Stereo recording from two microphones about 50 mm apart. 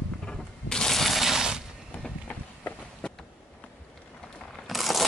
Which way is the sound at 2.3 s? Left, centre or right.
Left.